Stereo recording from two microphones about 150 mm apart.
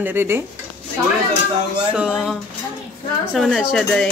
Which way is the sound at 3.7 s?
5° left (ahead or behind).